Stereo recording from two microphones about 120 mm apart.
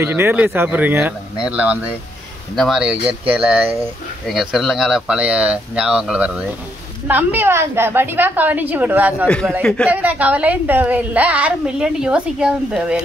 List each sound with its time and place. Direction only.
0.0 s a woman's voice: 20° right (ahead or behind)
2.5 s a woman's voice: centre (ahead or behind); by 3.8 s 15° right (ahead or behind)
4.3 s a woman's voice: centre (ahead or behind)
9.6 s speech: 5° left (ahead or behind)
9.8 s a woman's voice: 10° right (ahead or behind)